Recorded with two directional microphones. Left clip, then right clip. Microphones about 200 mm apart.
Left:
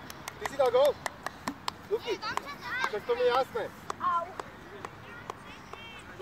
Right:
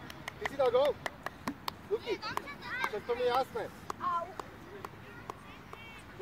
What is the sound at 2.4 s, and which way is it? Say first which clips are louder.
Speech: left 4 dB; 15° right (ahead or behind).